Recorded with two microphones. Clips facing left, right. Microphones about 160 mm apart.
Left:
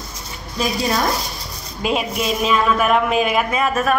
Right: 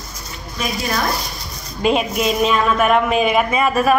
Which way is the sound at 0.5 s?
30° left (ahead or behind).